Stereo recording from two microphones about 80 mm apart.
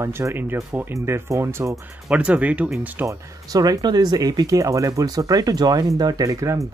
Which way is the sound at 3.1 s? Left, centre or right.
Right.